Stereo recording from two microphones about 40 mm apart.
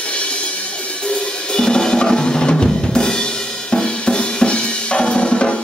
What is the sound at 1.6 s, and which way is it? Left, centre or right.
Drum, centre.